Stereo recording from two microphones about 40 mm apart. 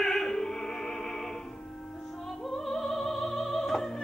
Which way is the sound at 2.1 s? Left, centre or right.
Centre.